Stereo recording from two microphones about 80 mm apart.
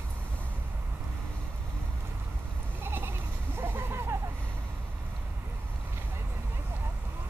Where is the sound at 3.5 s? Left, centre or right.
Right.